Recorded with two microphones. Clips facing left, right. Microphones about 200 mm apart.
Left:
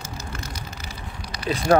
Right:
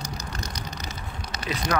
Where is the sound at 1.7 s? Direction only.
40° left (ahead or behind).